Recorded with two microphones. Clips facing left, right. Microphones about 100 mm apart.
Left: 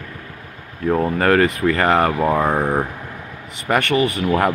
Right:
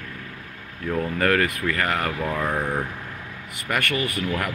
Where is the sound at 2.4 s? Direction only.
55° left (ahead or behind).